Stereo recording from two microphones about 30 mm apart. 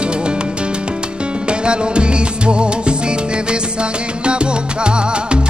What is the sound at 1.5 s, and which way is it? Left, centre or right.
Music, right.